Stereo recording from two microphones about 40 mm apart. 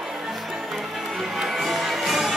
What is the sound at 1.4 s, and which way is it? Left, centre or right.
Music, centre.